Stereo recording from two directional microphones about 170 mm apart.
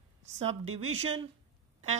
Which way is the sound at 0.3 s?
40° right (ahead or behind).